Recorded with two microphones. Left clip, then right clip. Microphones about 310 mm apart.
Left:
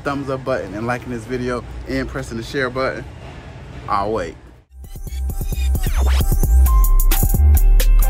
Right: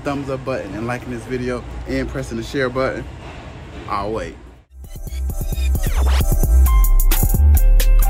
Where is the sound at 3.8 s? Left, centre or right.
Centre.